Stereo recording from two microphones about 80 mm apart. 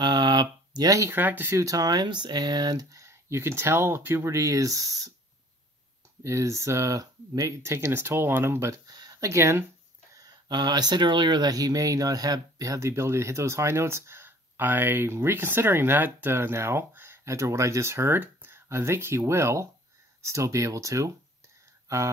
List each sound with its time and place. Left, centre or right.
0.0 s a sound: right
1.1 s speech: right
1.6 s speech: right
2.9 s speech: right
6.2 s speech: right
8.7 s speech: right
9.1 s speech: right
10.5 s speech: right